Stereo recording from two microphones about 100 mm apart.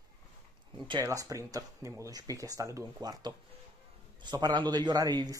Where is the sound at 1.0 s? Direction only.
35° right (ahead or behind).